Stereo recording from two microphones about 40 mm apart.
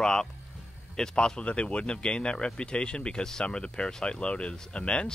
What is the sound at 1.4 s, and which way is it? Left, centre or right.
Speech, left.